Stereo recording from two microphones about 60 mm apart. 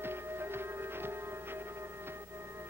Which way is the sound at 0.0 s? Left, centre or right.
Right.